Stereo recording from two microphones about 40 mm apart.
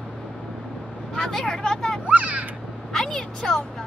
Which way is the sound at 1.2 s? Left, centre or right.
Centre.